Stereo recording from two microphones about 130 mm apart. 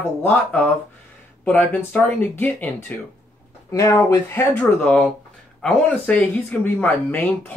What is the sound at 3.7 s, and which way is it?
Speech, 25° left (ahead or behind).